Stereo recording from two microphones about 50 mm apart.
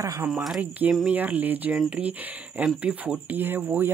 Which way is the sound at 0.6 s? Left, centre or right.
Right.